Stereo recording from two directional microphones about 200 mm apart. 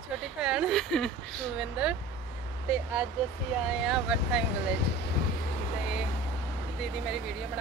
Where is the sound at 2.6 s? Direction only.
5° right (ahead or behind).